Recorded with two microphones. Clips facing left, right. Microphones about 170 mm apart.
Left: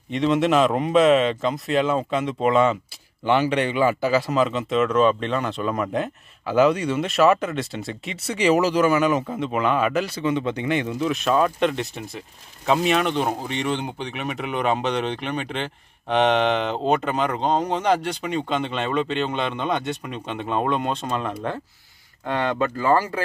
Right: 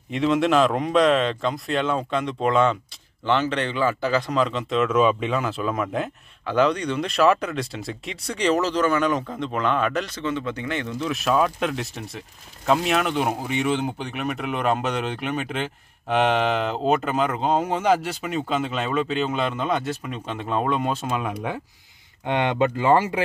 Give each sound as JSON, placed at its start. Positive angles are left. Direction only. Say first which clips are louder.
{"t": 0.1, "sound": "speech", "louder": "left 1 dB", "side_deg": 0}
{"t": 11.1, "sound": "speech", "louder": "even", "side_deg": 0}